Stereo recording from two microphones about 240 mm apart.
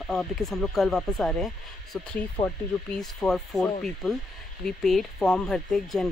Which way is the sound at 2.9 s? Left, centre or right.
Centre.